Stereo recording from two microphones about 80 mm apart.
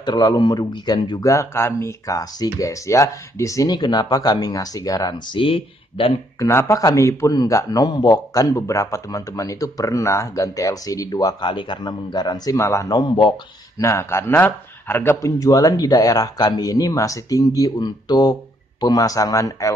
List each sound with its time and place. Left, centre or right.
0.0 s speech: left
1.2 s speech: left
3.7 s speech: left
5.3 s a man's voice: left
6.4 s speech: left
7.9 s speech: left
11.4 s speech: left
12.5 s speech: left
12.9 s a man's voice: left
13.7 s speech: left
15.2 s speech: left